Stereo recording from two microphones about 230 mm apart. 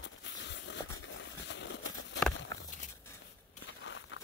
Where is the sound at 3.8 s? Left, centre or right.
Left.